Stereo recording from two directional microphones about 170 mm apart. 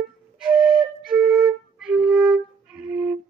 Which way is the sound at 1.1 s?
5° right (ahead or behind).